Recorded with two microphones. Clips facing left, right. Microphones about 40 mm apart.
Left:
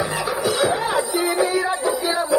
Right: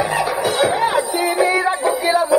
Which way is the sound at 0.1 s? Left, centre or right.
Right.